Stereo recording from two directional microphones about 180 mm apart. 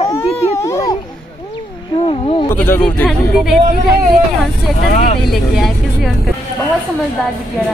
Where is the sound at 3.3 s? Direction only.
Centre (ahead or behind).